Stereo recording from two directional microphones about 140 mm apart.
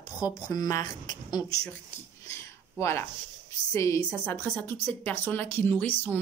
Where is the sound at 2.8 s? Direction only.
20° left (ahead or behind).